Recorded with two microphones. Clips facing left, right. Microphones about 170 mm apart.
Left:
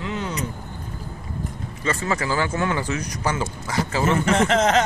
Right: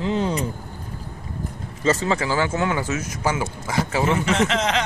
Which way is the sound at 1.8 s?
25° right (ahead or behind).